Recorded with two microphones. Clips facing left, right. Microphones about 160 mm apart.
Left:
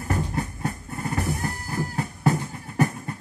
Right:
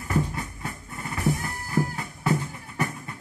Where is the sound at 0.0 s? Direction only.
45° left (ahead or behind).